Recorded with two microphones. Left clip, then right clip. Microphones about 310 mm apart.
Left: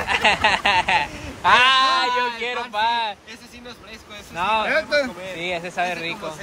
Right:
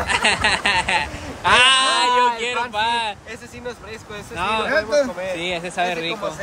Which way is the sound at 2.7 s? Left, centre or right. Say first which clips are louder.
Left 3 dB; centre.